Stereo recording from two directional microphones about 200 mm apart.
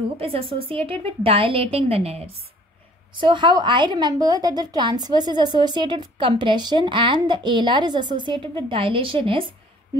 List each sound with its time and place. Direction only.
0.2 s a woman's voice: 25° right (ahead or behind)